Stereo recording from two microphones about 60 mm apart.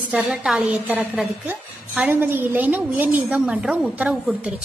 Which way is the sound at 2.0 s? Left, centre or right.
Right.